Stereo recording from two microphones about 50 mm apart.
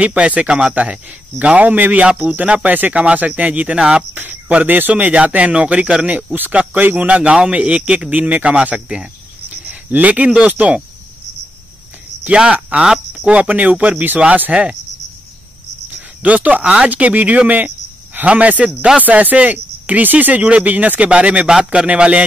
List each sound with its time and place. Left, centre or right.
0.0 s a man's voice: right
1.4 s a man's voice: right
4.1 s a man's voice: right
7.2 s a man's voice: centre
8.7 s speech: centre
9.7 s a man's voice: right
12.3 s a man's voice: right
12.8 s speech: centre
13.3 s a man's voice: right
15.9 s a man's voice: right